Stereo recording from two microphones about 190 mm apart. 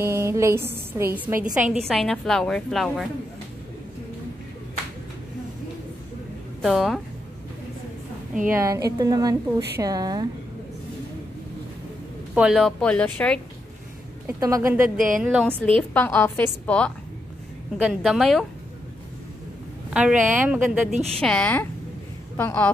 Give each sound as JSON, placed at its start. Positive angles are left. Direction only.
{"t": 0.0, "sound": "a sound", "side_deg": -15}
{"t": 0.9, "sound": "a woman's voice", "side_deg": -10}
{"t": 6.6, "sound": "a woman's voice", "side_deg": 0}
{"t": 8.5, "sound": "a woman's voice", "side_deg": -15}
{"t": 12.4, "sound": "a woman's voice", "side_deg": 0}
{"t": 14.2, "sound": "a woman's voice", "side_deg": -15}
{"t": 15.0, "sound": "a woman's voice", "side_deg": -45}
{"t": 15.2, "sound": "a woman's voice", "side_deg": -5}
{"t": 15.9, "sound": "a woman's voice", "side_deg": 10}
{"t": 19.9, "sound": "a woman's voice", "side_deg": -5}
{"t": 21.2, "sound": "a woman's voice", "side_deg": 5}